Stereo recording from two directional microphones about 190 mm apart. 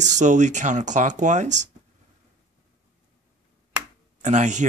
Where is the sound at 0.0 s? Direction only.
40° right (ahead or behind).